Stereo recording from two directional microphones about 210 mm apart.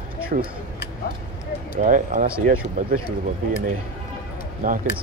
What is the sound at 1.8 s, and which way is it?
Speech, 40° right (ahead or behind).